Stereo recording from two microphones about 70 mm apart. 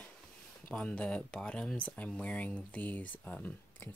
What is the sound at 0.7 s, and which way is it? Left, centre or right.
Speech, centre.